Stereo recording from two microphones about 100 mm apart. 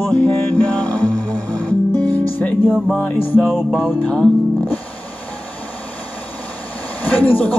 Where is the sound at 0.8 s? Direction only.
15° left (ahead or behind).